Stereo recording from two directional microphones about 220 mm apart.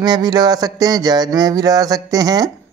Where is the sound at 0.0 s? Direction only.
20° right (ahead or behind).